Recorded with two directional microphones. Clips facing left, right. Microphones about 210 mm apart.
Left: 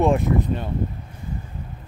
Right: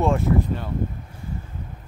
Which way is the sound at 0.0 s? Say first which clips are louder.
Left 2 dB; 20° left (ahead or behind).